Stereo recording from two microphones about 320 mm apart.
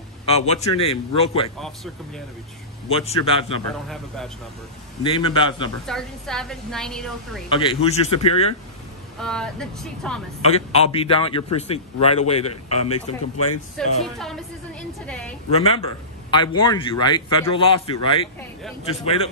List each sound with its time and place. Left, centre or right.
0.3 s speech: centre
2.9 s speech: centre
5.0 s speech: centre
5.9 s a woman's voice: centre
7.4 s speech: centre
9.2 s a woman's voice: centre
10.4 s a man's voice: centre
12.9 s speech: left
13.8 s a woman's voice: centre
15.5 s speech: centre